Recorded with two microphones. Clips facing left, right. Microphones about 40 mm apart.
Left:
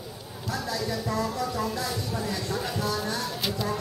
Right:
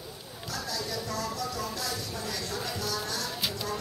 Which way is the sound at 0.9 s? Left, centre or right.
Left.